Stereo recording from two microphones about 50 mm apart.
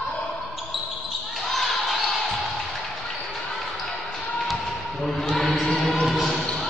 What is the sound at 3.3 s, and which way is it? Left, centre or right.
Basketball bounce, centre.